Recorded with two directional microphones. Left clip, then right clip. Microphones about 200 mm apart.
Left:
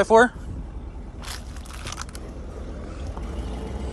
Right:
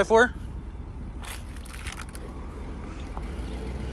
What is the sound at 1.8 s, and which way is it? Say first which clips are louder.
Crushing: left 4 dB; 15° left (ahead or behind).